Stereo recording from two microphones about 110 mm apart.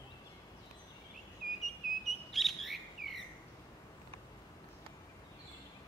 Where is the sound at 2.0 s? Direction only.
Centre (ahead or behind).